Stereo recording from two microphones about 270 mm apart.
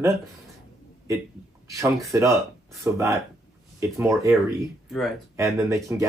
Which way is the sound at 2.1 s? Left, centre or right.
Centre.